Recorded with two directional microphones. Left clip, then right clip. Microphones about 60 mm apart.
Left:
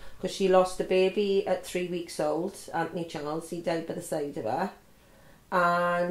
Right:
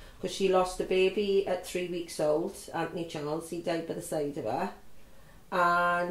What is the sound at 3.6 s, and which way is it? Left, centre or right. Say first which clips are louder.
Speech: left 2 dB; left.